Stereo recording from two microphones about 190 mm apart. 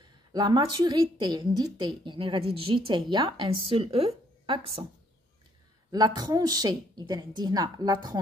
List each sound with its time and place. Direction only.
0.0 s a woman's voice: 20° right (ahead or behind)
5.9 s a woman's voice: 20° right (ahead or behind)